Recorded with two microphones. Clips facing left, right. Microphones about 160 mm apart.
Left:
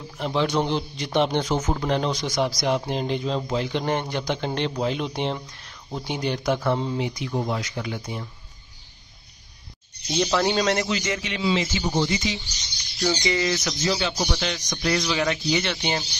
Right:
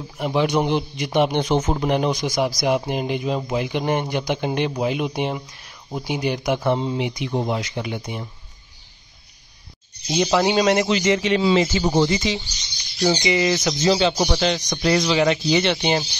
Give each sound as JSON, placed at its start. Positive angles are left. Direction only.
{"t": 0.2, "sound": "a man's voice", "side_deg": -15}
{"t": 10.0, "sound": "a man's voice", "side_deg": -15}
{"t": 11.2, "sound": "a man's voice", "side_deg": -40}
{"t": 13.0, "sound": "speech", "side_deg": -20}
{"t": 14.1, "sound": "a man's voice", "side_deg": -50}
{"t": 15.0, "sound": "speech", "side_deg": -25}